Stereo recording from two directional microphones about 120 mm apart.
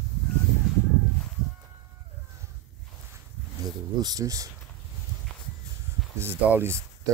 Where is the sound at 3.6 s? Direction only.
35° right (ahead or behind).